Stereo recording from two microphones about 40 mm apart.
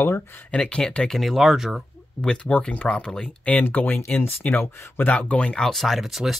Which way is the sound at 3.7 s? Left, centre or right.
Left.